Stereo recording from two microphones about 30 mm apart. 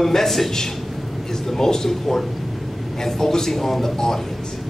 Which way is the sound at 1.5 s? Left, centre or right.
Centre.